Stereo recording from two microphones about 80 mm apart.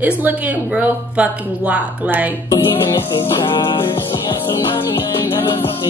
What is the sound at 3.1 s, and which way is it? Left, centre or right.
Music, left.